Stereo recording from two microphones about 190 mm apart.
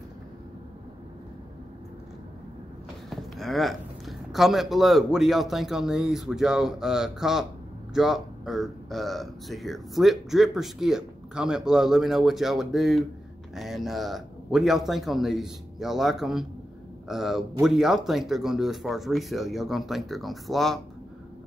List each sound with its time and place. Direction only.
3.1 s speech: centre (ahead or behind)